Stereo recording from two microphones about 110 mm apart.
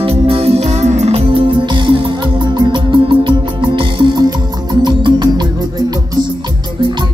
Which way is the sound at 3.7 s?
50° right (ahead or behind).